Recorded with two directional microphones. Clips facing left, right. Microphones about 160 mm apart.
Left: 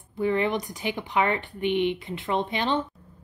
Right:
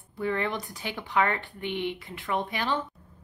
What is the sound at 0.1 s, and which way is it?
Speech, 20° left (ahead or behind).